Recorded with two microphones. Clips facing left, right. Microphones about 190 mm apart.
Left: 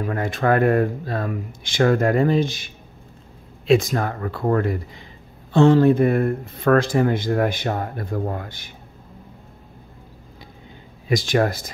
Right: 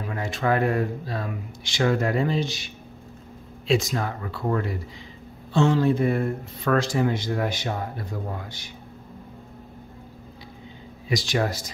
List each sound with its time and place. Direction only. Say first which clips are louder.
0.0 s speech: left 5 dB; 55° left (ahead or behind)
11.1 s speech: left 5 dB; 50° left (ahead or behind)